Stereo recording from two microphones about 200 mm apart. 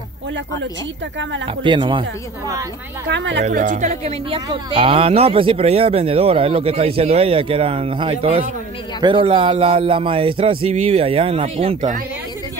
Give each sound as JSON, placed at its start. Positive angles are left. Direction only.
{"t": 1.6, "sound": "speech", "side_deg": -25}
{"t": 3.1, "sound": "a woman's voice", "side_deg": -60}
{"t": 3.4, "sound": "speech", "side_deg": -40}